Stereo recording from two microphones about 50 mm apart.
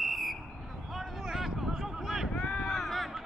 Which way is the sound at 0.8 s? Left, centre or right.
Centre.